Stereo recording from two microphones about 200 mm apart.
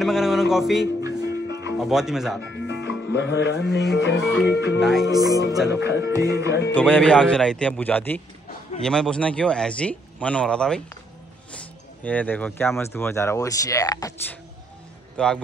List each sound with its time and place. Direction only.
0.0 s music: centre (ahead or behind)
1.0 s music: 15° right (ahead or behind)
1.8 s speech: centre (ahead or behind)
2.4 s music: 65° left (ahead or behind)
3.9 s speech: 65° left (ahead or behind)
4.2 s speech: 5° right (ahead or behind)
4.5 s speech: 60° left (ahead or behind)
4.7 s speech: centre (ahead or behind)
5.1 s speech: 20° right (ahead or behind)
5.7 s speech: 60° left (ahead or behind)
6.0 s music: 15° right (ahead or behind)
6.4 s speech: 55° left (ahead or behind)
6.7 s speech: 5° left (ahead or behind)
15.1 s speech: 5° left (ahead or behind)